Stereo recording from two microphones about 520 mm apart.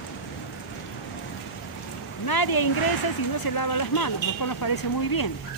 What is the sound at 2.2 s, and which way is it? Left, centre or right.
Speech, left.